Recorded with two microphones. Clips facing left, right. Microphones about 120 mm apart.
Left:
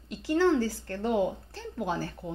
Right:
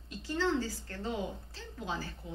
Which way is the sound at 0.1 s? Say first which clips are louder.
Left 8 dB; 70° left (ahead or behind).